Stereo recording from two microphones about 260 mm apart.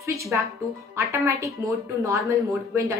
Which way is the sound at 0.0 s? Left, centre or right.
Centre.